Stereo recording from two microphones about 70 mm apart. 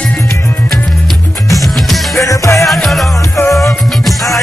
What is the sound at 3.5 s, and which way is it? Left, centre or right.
Music, left.